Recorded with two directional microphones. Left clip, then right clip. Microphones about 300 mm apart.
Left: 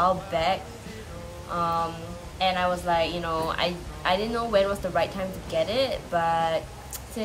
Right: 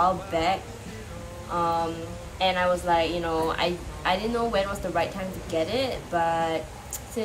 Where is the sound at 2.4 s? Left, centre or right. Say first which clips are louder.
Right 1 dB; centre.